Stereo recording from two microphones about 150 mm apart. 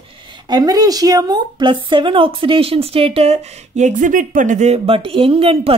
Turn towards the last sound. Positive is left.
turn(degrees=-40)  # may be behind; listen again after turning